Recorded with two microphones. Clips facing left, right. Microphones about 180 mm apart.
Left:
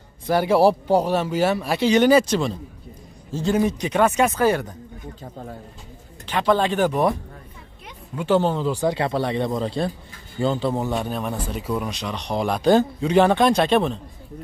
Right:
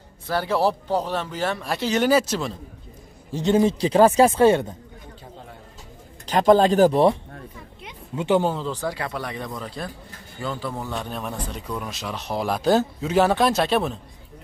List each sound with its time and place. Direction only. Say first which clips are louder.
0.3 s speech: left 5 dB; 10° left (ahead or behind)
3.3 s a man's voice: right 2 dB; 20° right (ahead or behind)
6.2 s speech: right 4 dB; 40° right (ahead or behind)
7.8 s a sound: right 1 dB; 15° right (ahead or behind)
8.5 s speech: left 5 dB; 10° left (ahead or behind)
8.8 s speech: left 7 dB; 25° left (ahead or behind)
11.1 s speech: left 4 dB; centre (ahead or behind)